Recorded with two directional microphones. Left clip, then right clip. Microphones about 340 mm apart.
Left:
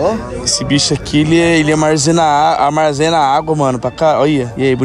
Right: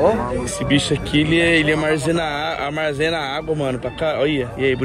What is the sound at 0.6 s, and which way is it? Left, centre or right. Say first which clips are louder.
Speech: left 1 dB; centre.